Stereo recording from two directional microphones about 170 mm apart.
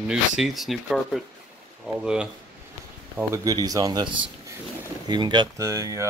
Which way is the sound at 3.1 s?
20° right (ahead or behind).